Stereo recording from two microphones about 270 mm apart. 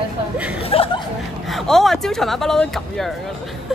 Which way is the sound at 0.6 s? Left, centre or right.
Left.